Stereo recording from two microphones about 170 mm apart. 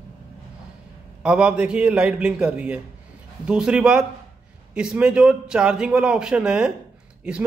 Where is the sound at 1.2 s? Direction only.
5° right (ahead or behind).